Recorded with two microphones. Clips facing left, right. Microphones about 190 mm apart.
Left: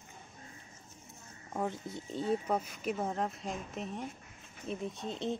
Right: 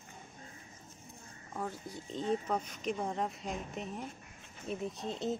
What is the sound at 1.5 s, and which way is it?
Speech, 25° left (ahead or behind).